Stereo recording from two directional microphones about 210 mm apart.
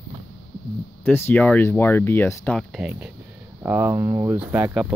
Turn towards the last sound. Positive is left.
turn(degrees=-10)  # may be behind; listen again after turning